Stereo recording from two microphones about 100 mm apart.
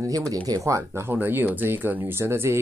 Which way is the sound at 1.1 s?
20° right (ahead or behind).